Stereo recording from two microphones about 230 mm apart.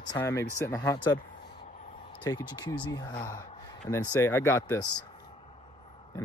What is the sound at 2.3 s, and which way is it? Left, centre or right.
Speech, centre.